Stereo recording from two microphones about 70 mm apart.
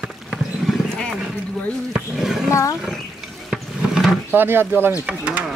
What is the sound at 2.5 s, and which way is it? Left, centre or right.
Roaring cats, left.